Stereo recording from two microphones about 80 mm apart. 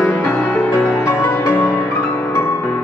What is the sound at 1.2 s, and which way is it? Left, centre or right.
Music, left.